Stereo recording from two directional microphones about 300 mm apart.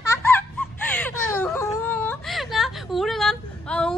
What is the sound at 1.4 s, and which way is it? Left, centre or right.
Whimper, centre.